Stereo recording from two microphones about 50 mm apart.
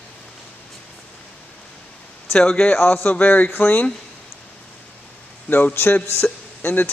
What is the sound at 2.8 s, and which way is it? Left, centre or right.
Speech, left.